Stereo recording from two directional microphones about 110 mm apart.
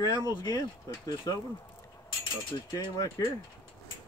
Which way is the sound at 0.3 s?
40° left (ahead or behind).